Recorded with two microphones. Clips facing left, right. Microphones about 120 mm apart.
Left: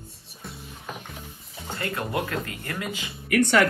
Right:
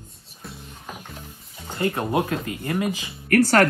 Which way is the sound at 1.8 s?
25° right (ahead or behind).